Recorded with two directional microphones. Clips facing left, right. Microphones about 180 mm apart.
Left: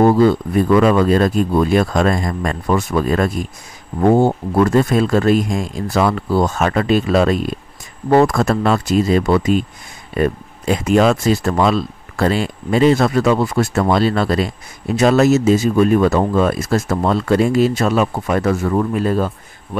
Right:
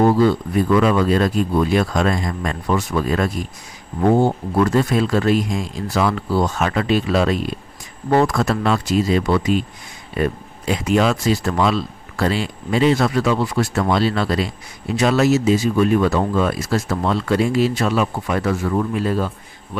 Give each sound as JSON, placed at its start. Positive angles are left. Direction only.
{"t": 0.0, "sound": "speech", "side_deg": 50}